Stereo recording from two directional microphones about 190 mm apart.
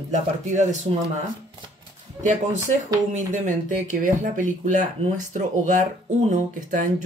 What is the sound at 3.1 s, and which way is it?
Speech, 40° right (ahead or behind).